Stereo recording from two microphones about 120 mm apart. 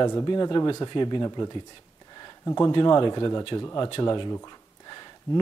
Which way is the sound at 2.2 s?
30° left (ahead or behind).